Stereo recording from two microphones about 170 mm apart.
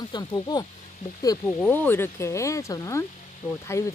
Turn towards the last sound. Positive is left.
turn(degrees=15)  # may be behind; listen again after turning